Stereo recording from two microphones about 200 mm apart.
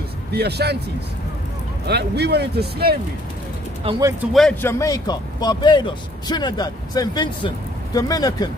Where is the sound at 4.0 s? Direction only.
15° right (ahead or behind).